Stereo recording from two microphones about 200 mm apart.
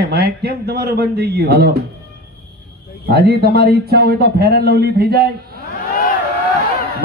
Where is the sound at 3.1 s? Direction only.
55° right (ahead or behind).